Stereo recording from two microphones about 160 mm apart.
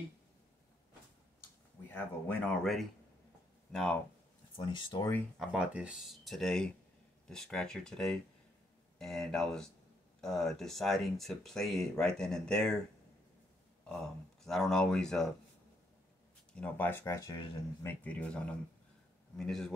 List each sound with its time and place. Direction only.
1.9 s speech: 10° left (ahead or behind)
4.6 s speech: 30° left (ahead or behind)
5.4 s speech: 5° right (ahead or behind)
13.8 s speech: 5° left (ahead or behind)
16.5 s speech: 10° left (ahead or behind); by 17.5 s 25° left (ahead or behind)
17.8 s speech: 10° left (ahead or behind)